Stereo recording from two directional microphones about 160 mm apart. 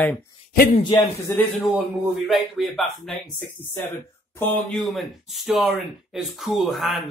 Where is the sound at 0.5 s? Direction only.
65° left (ahead or behind).